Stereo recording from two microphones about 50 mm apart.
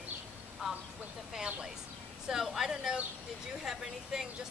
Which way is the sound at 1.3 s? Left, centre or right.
Centre.